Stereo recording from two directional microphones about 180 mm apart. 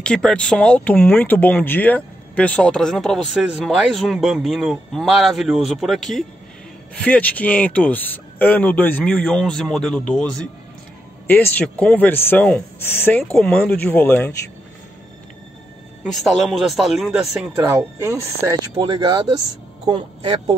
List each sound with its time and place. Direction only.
0.0 s speech: 5° left (ahead or behind)
16.0 s speech: centre (ahead or behind)
17.7 s speech: 15° right (ahead or behind)